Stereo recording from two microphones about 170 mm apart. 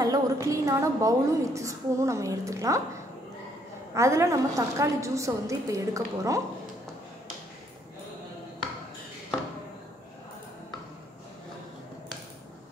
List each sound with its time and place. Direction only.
0.0 s a woman's voice: 20° right (ahead or behind)
3.9 s a woman's voice: 15° right (ahead or behind)